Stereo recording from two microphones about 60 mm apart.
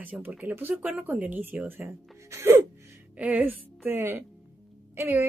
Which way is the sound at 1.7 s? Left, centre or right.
Right.